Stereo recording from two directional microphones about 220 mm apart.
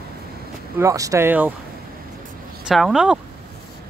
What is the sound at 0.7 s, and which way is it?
Speech, 15° right (ahead or behind).